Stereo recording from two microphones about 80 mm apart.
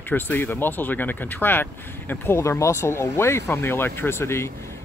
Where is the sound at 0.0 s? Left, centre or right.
Left.